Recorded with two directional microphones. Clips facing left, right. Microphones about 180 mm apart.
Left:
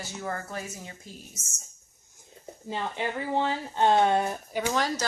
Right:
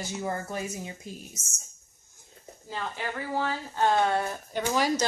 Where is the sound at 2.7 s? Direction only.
20° left (ahead or behind).